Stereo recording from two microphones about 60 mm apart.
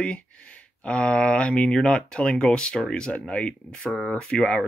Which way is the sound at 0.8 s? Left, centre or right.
Centre.